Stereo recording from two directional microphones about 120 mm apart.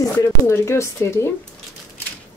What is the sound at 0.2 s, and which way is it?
Speech, 25° left (ahead or behind).